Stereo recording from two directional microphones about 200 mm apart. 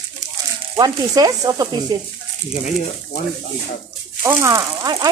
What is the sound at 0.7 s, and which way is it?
Sizzle, 20° right (ahead or behind).